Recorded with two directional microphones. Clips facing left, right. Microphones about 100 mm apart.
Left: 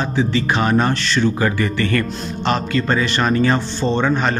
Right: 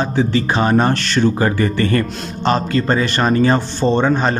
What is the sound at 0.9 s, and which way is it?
Speech, 50° right (ahead or behind).